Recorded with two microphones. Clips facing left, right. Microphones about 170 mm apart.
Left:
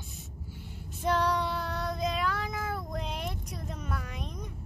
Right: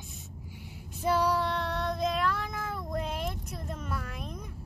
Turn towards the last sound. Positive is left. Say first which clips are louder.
# even
turn(degrees=-5)  # may be behind; listen again after turning